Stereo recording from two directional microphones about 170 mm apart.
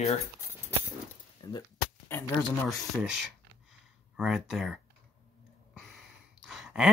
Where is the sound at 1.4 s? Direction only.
20° left (ahead or behind).